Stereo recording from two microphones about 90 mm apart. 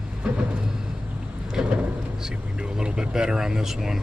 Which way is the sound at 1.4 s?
10° right (ahead or behind).